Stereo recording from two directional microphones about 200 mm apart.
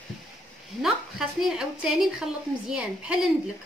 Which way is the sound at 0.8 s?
Centre (ahead or behind).